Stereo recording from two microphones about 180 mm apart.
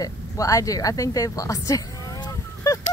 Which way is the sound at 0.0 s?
20° left (ahead or behind).